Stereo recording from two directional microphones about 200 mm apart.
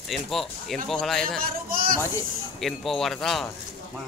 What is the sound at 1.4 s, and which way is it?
Speech, 45° right (ahead or behind).